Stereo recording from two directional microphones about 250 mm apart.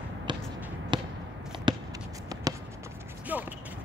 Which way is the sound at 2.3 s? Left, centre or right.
Centre.